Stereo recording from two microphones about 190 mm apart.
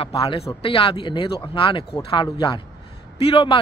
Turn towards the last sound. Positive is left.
turn(degrees=30)  # may be behind; listen again after turning